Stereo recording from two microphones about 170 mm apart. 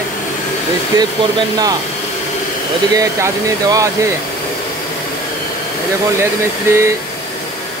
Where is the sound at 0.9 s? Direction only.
25° right (ahead or behind).